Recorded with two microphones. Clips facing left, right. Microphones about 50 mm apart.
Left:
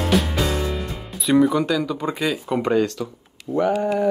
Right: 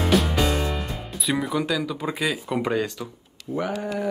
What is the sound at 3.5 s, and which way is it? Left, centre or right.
Speech, left.